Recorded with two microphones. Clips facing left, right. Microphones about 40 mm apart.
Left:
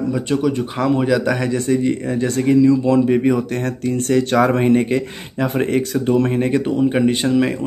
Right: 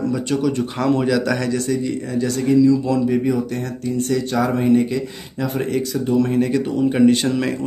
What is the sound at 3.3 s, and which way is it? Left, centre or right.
Speech, left.